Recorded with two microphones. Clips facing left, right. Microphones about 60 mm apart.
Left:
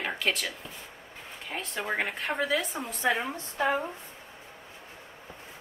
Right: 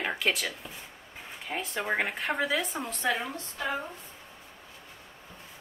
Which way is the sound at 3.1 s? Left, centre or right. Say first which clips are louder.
Left 2 dB; left.